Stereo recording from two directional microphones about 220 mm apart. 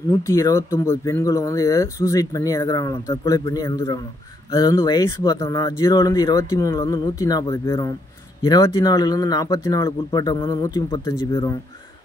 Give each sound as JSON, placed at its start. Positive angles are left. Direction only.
{"t": 0.2, "sound": "speech", "side_deg": 15}